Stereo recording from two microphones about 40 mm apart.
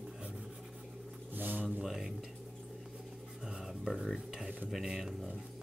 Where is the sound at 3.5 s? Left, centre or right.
Centre.